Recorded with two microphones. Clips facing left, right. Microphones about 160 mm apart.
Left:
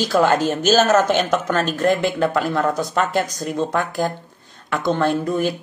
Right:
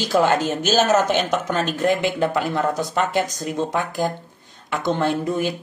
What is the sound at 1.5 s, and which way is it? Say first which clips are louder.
Speech: left 2 dB; 50° left (ahead or behind).